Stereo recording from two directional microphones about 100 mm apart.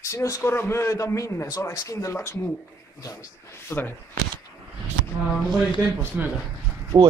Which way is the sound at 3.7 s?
20° left (ahead or behind).